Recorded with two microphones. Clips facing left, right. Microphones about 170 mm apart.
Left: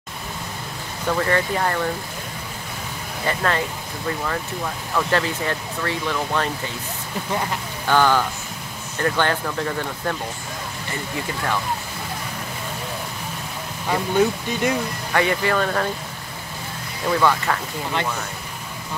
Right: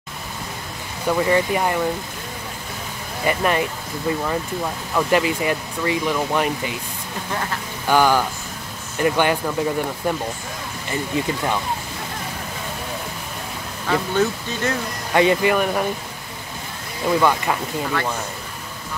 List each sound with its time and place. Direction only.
1.0 s speech: 10° right (ahead or behind)
3.3 s speech: 15° right (ahead or behind)
4.9 s speech: 15° right (ahead or behind)
7.9 s speech: 10° right (ahead or behind)
13.8 s speech: 15° left (ahead or behind)
15.1 s speech: 20° right (ahead or behind)
17.1 s speech: 15° right (ahead or behind)